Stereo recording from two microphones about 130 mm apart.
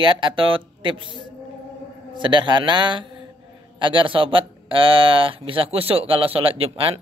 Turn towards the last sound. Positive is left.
turn(degrees=-45)  # may be behind; listen again after turning